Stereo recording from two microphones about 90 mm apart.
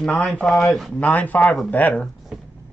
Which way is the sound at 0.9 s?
15° left (ahead or behind).